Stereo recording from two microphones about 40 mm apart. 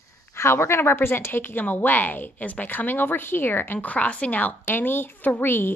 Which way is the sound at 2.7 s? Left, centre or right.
Left.